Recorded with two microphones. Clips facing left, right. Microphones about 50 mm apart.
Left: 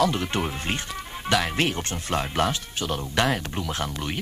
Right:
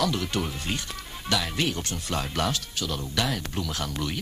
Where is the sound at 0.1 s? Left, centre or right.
Left.